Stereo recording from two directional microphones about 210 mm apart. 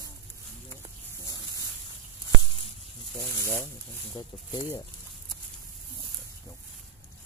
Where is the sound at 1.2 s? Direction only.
15° left (ahead or behind).